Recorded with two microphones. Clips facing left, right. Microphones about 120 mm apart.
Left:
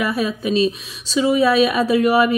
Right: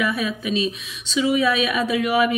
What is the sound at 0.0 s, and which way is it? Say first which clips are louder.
Speech: left 3 dB; 35° left (ahead or behind).